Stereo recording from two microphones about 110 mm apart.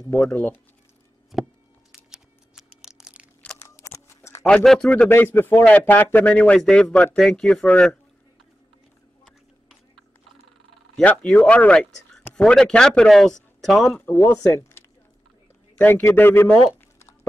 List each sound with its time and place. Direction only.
0.1 s speech: 10° left (ahead or behind)
1.3 s a sound: centre (ahead or behind)
3.5 s a sound: 25° left (ahead or behind)
4.6 s speech: 5° left (ahead or behind)
11.0 s speech: 15° left (ahead or behind)
13.9 s a man's voice: 20° left (ahead or behind)